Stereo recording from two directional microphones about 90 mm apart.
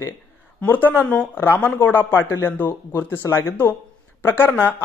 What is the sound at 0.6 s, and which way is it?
Speech, 20° left (ahead or behind).